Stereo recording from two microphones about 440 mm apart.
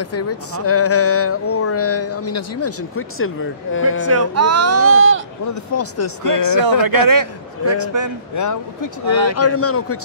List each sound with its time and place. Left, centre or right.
0.0 s speech: left
4.0 s speech: right
5.5 s speech: left
6.4 s speech: right
8.4 s speech: left
9.3 s speech: left